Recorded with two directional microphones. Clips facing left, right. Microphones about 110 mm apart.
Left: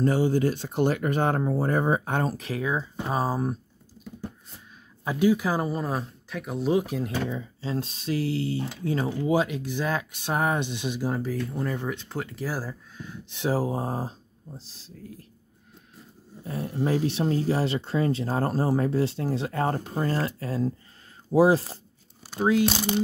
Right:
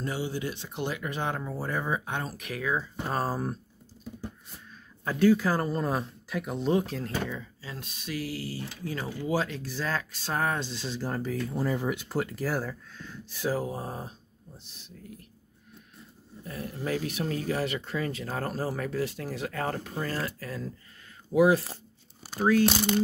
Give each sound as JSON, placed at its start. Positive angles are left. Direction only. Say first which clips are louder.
{"t": 0.0, "sound": "speech", "louder": "left 10 dB", "side_deg": 45}
{"t": 3.1, "sound": "speech", "louder": "left 4 dB", "side_deg": 10}
{"t": 5.0, "sound": "speech", "louder": "even", "side_deg": 15}
{"t": 7.2, "sound": "speech", "louder": "left 7 dB", "side_deg": 25}
{"t": 16.4, "sound": "speech", "louder": "left 6 dB", "side_deg": 30}
{"t": 22.4, "sound": "speech", "louder": "left 1 dB", "side_deg": 20}